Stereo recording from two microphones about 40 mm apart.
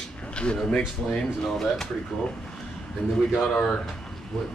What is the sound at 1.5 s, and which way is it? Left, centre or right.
Speech, centre.